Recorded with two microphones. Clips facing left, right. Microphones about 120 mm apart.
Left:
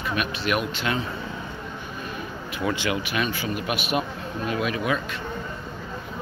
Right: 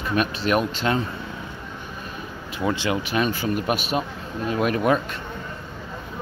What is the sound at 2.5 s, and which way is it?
Speech, 30° right (ahead or behind).